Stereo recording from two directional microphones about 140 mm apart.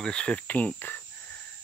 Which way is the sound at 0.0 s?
5° left (ahead or behind).